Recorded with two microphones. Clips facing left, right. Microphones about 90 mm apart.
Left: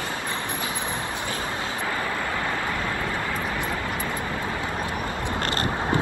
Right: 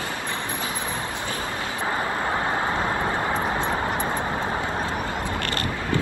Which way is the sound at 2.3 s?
30° right (ahead or behind).